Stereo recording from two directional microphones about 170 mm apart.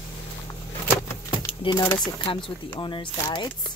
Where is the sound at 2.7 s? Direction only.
30° left (ahead or behind).